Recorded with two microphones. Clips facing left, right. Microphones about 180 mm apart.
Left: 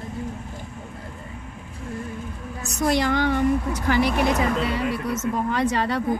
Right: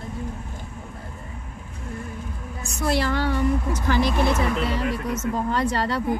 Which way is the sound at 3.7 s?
15° left (ahead or behind).